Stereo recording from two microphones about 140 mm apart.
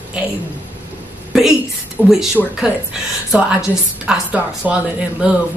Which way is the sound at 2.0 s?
15° left (ahead or behind).